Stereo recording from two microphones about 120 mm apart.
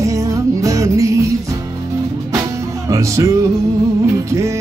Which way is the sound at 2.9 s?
25° right (ahead or behind).